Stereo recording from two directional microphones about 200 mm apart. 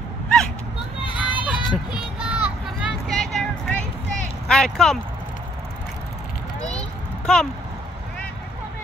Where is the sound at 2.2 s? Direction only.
5° right (ahead or behind).